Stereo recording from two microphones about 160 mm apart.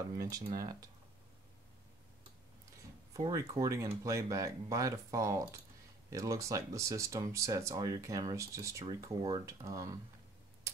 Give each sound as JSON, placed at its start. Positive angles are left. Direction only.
{"t": 0.2, "sound": "speech", "side_deg": -20}
{"t": 3.1, "sound": "speech", "side_deg": -20}